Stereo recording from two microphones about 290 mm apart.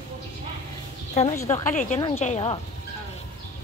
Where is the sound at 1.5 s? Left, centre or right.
Centre.